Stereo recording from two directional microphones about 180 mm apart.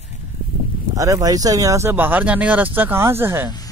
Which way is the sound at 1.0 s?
20° right (ahead or behind).